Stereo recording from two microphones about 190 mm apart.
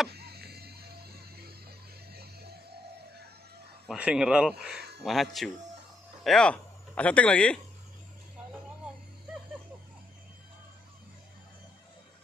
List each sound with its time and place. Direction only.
0.1 s music: 55° right (ahead or behind)
3.8 s speech: 5° right (ahead or behind)